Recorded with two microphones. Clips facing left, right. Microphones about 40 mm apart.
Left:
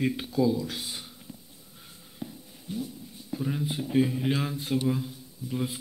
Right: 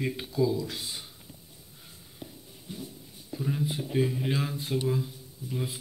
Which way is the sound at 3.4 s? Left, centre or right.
Centre.